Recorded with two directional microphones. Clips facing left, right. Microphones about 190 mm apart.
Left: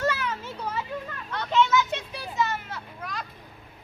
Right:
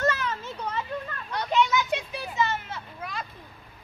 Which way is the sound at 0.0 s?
10° left (ahead or behind).